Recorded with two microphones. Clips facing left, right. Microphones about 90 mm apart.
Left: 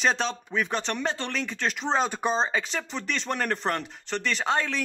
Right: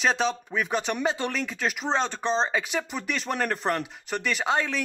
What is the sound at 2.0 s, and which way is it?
Speech, 10° left (ahead or behind).